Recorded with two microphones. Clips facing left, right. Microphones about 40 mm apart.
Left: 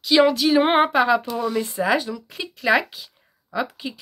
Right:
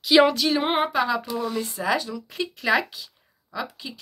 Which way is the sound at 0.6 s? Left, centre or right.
Left.